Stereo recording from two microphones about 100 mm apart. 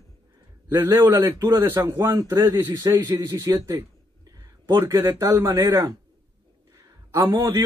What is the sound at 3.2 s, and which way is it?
Speech, 45° right (ahead or behind).